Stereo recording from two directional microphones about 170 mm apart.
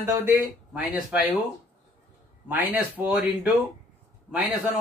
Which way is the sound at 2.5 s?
10° right (ahead or behind).